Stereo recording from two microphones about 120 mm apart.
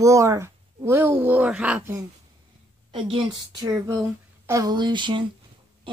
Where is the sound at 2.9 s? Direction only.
50° right (ahead or behind).